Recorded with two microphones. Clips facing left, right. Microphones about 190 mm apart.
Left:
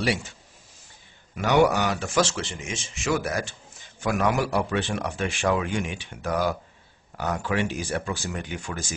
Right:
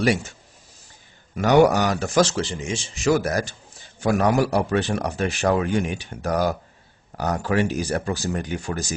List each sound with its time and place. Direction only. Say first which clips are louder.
0.0 s speech: right 5 dB; 45° right (ahead or behind)
1.3 s speech: right 4 dB; 45° right (ahead or behind)